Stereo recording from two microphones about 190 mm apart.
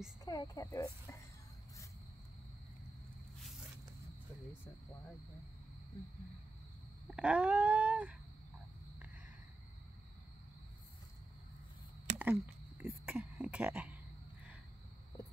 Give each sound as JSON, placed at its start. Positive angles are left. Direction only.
{"t": 0.2, "sound": "speech", "side_deg": 20}
{"t": 7.1, "sound": "wail", "side_deg": -5}
{"t": 12.2, "sound": "a sound", "side_deg": -10}